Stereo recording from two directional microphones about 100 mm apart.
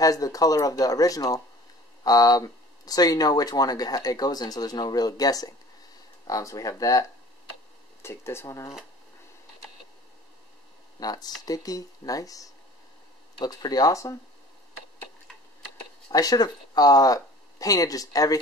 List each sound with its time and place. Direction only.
0.0 s speech: 35° left (ahead or behind)
11.0 s speech: 40° left (ahead or behind)
16.1 s speech: 40° left (ahead or behind)